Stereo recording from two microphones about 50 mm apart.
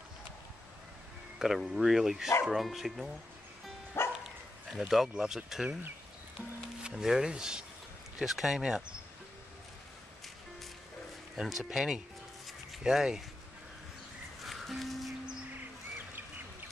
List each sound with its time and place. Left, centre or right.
1.7 s speech: centre
4.0 s dog: left
4.7 s speech: centre
6.8 s speech: centre
8.2 s speech: centre
11.4 s speech: centre
14.4 s music: centre